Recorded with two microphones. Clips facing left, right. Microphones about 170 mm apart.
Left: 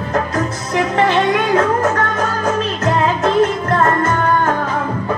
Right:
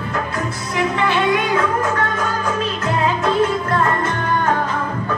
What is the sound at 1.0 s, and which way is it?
Music, 40° left (ahead or behind).